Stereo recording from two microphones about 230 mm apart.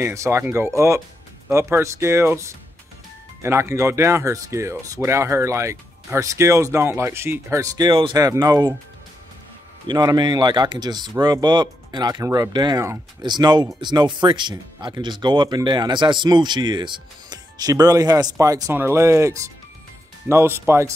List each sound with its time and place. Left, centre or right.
0.0 s speech: centre
9.8 s speech: centre